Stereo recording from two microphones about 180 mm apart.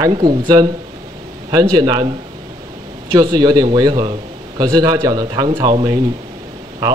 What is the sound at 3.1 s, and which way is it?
Speech, 25° right (ahead or behind).